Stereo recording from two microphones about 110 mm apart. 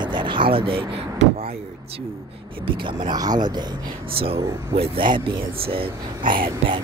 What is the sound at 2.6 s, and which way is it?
Speech, 45° right (ahead or behind).